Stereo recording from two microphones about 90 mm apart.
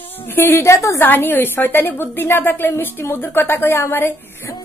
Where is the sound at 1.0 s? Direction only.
20° left (ahead or behind).